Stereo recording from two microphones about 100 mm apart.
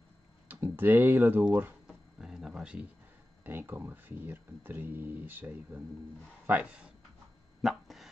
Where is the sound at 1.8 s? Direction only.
5° right (ahead or behind).